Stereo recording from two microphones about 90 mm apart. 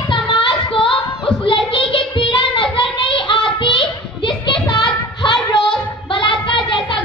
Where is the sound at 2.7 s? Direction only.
70° left (ahead or behind).